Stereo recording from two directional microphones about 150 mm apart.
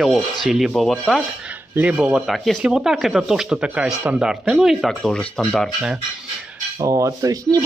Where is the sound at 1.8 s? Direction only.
10° right (ahead or behind).